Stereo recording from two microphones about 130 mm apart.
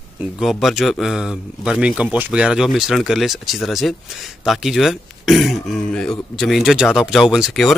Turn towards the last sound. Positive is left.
turn(degrees=0)  # may be behind; listen again after turning